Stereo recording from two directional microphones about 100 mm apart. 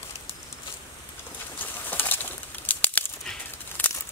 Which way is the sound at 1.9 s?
20° left (ahead or behind).